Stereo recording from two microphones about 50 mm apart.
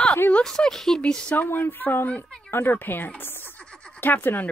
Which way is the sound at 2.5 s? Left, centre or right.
Left.